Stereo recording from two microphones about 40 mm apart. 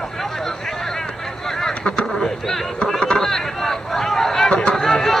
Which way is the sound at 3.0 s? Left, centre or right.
Centre.